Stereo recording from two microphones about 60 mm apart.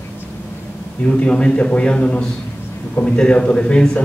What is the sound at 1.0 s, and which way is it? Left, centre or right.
A man's voice, centre.